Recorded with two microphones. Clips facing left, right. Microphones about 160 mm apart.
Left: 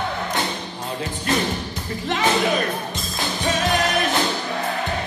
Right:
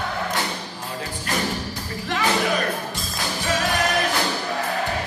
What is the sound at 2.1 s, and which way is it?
Music, 20° left (ahead or behind).